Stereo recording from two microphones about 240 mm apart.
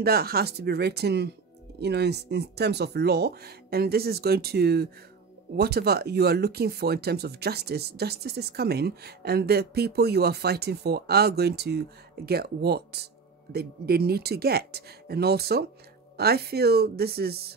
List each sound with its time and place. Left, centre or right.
0.0 s speech: right